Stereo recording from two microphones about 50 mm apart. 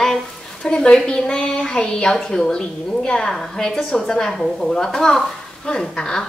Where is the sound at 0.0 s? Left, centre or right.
Centre.